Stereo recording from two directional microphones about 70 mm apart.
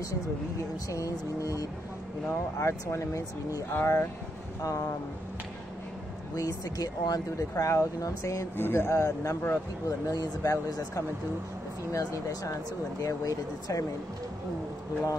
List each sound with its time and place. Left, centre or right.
0.8 s speech: left
2.6 s speech: left
4.6 s speech: left
6.3 s speech: left
8.5 s speech: left
9.8 s speech: left